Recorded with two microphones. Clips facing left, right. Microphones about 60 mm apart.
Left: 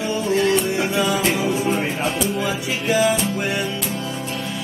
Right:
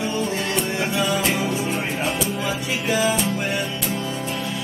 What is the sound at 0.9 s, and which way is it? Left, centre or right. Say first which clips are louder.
Music: left 1 dB; centre.